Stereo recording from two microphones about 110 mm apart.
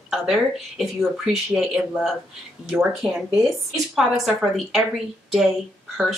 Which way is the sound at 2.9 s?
5° right (ahead or behind).